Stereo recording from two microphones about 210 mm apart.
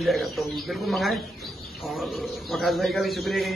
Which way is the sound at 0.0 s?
Centre (ahead or behind).